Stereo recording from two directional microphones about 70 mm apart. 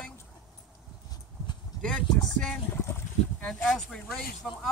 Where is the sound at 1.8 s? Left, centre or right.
Centre.